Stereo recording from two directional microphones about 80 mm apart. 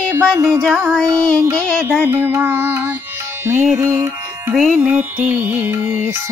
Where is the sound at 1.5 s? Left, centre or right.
Centre.